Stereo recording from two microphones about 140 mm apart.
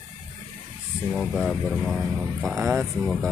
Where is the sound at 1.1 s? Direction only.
Centre (ahead or behind).